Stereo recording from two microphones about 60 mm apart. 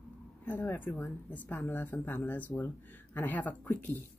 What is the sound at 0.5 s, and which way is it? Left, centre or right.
Speech, left.